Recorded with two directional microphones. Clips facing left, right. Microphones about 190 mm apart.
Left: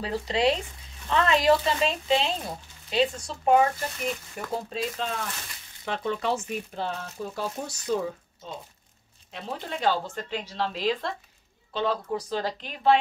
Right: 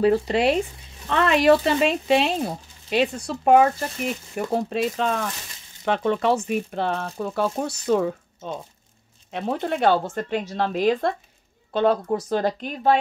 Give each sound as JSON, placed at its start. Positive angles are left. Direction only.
{"t": 0.0, "sound": "speech", "side_deg": -60}
{"t": 4.6, "sound": "speech", "side_deg": -75}
{"t": 9.3, "sound": "a woman's voice", "side_deg": -55}